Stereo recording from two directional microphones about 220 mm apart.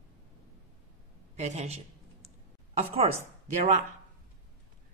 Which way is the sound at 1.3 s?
30° right (ahead or behind).